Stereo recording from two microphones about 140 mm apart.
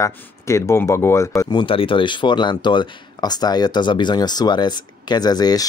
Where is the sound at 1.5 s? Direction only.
35° left (ahead or behind).